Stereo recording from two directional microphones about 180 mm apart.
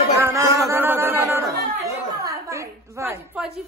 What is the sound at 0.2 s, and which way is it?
Chatter, 15° right (ahead or behind).